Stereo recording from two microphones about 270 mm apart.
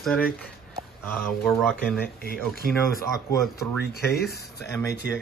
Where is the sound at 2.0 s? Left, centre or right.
Left.